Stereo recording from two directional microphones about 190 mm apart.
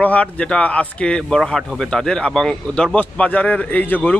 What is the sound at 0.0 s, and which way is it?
A man's voice, 5° left (ahead or behind).